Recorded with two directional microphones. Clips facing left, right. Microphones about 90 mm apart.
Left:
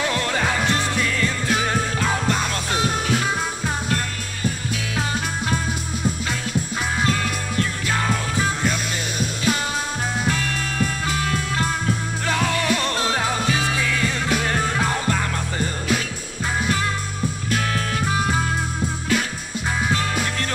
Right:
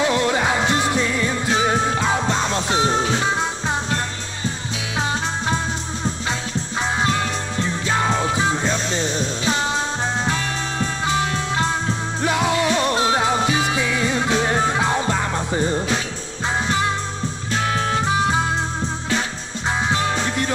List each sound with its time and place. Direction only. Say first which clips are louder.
0.0 s music: right 4 dB; 20° right (ahead or behind)
7.6 s music: right 5 dB; 25° right (ahead or behind)
12.2 s music: right 5 dB; 20° right (ahead or behind)
17.6 s music: right 6 dB; 25° right (ahead or behind)
19.9 s music: right 2 dB; 20° right (ahead or behind)